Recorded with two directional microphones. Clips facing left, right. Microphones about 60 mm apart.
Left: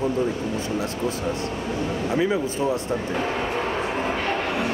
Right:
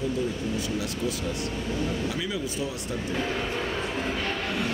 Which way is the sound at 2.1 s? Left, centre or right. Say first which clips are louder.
Left 8 dB; left.